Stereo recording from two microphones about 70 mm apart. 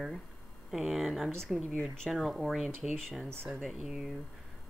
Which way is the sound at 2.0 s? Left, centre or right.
Centre.